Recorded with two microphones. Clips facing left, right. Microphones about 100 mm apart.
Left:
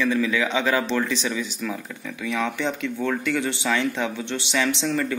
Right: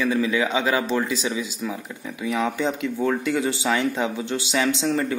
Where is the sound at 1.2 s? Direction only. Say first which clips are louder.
Right 1 dB; 10° right (ahead or behind).